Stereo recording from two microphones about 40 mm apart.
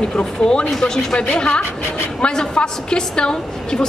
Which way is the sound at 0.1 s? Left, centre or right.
Centre.